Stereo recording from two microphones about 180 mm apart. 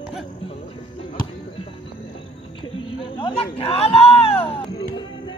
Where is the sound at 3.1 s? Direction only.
30° left (ahead or behind).